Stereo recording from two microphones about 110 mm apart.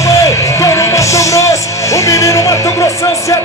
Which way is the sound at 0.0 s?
30° left (ahead or behind).